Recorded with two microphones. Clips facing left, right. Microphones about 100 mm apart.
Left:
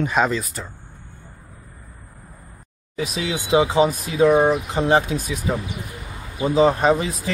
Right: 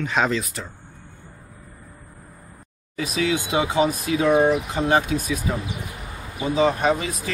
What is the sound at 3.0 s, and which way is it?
Speech, 30° left (ahead or behind).